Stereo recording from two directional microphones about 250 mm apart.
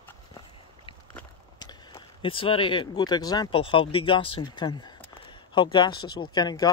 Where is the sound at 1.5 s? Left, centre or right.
Centre.